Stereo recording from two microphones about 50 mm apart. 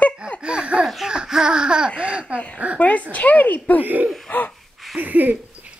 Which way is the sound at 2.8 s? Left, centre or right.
Left.